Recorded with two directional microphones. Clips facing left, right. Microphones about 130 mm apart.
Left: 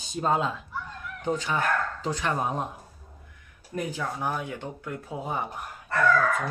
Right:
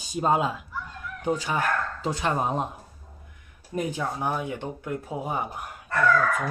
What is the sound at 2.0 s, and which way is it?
Speech, 20° right (ahead or behind).